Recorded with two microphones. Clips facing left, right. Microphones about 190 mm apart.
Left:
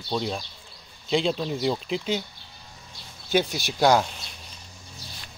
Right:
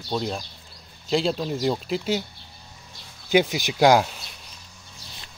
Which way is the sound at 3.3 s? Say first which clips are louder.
Right 4 dB; 10° right (ahead or behind).